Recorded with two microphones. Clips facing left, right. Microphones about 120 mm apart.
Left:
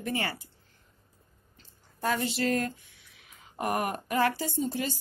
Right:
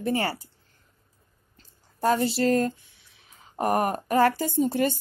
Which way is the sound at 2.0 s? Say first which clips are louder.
Right 6 dB; 35° right (ahead or behind).